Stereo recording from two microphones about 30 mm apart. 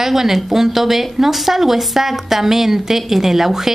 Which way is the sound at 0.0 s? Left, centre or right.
Centre.